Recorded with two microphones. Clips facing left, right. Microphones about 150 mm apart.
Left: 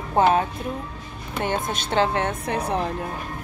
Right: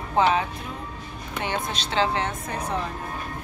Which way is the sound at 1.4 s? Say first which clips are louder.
Left 3 dB; 50° left (ahead or behind).